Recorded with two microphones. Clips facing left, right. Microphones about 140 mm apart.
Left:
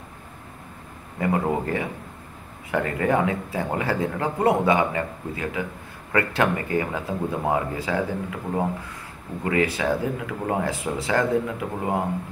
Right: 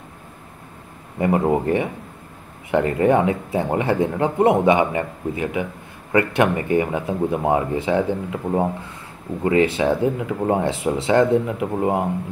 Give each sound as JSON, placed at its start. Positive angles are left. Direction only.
{"t": 1.1, "sound": "speech", "side_deg": -25}